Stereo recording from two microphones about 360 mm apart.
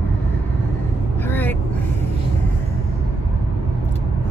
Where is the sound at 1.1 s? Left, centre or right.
Centre.